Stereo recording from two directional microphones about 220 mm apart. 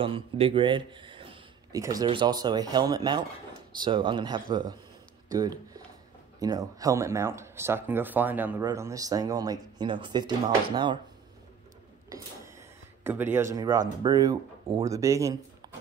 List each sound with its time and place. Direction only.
0.0 s speech: 25° right (ahead or behind)
12.1 s speech: 10° right (ahead or behind)